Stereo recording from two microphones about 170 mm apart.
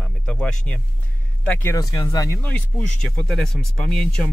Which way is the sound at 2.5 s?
5° left (ahead or behind).